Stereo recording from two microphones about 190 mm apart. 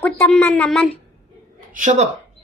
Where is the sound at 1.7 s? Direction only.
40° right (ahead or behind).